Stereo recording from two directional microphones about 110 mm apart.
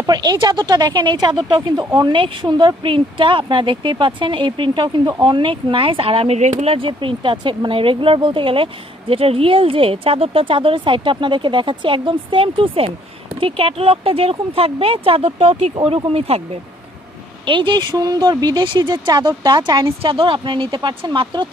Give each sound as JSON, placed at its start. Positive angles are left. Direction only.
{"t": 0.0, "sound": "a woman's voice", "side_deg": -40}
{"t": 17.5, "sound": "speech", "side_deg": -45}